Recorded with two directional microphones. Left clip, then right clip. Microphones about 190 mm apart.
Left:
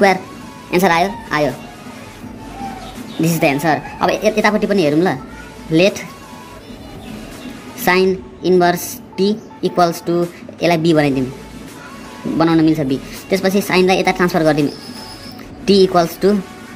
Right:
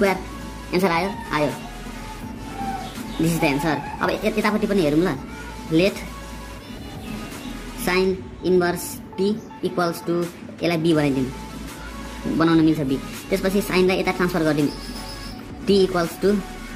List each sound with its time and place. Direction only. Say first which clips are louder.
0.7 s a woman's voice: left 7 dB; 20° left (ahead or behind)
3.3 s a woman's voice: left 8 dB; 20° left (ahead or behind)
7.8 s a woman's voice: left 7 dB; 25° left (ahead or behind)
12.4 s a woman's voice: left 5 dB; 20° left (ahead or behind)
15.6 s a woman's voice: left 7 dB; 25° left (ahead or behind)